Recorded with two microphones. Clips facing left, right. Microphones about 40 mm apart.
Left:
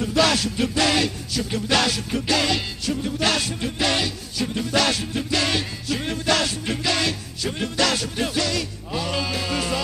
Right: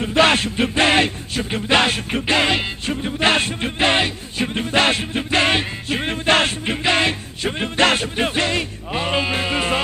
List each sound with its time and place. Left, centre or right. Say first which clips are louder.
0.0 s music: right 4 dB; right